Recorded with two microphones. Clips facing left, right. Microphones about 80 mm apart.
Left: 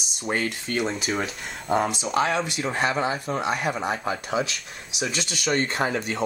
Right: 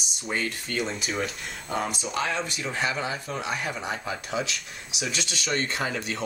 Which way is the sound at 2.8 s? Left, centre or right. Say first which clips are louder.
Left 4 dB; left.